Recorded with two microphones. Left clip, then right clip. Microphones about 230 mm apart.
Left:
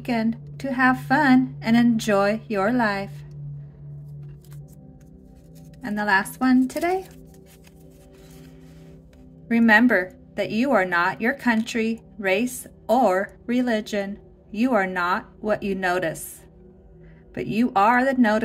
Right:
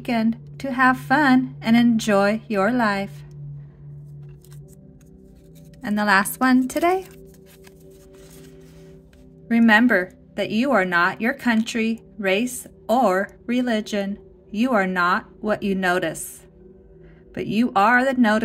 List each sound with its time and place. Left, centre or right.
0.0 s a woman's voice: centre
5.8 s speech: centre
9.5 s a woman's voice: centre
17.3 s a woman's voice: centre